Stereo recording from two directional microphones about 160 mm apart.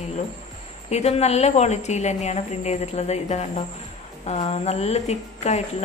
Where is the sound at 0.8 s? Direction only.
40° left (ahead or behind).